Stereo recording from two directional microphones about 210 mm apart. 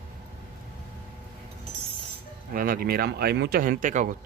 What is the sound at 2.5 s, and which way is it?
Speech, 45° right (ahead or behind).